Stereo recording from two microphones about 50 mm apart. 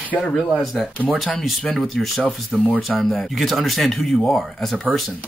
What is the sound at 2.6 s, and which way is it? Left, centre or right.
Speech, right.